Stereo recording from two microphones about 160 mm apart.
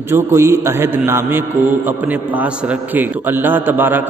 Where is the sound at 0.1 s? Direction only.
15° right (ahead or behind).